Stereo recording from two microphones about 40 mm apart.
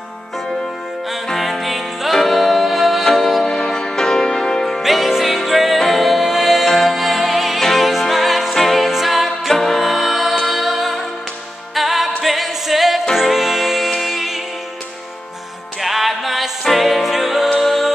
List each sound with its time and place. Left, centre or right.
1.3 s music: centre
3.0 s music: centre
4.6 s music: centre
6.6 s music: centre
6.9 s music: centre
15.8 s music: centre